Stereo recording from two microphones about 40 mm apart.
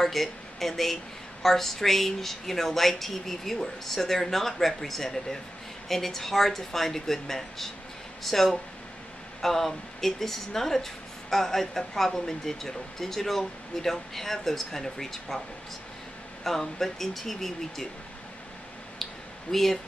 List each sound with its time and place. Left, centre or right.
0.0 s speech: centre
16.4 s speech: centre
19.5 s speech: centre